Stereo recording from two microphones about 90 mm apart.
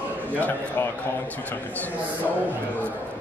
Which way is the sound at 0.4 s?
20° left (ahead or behind).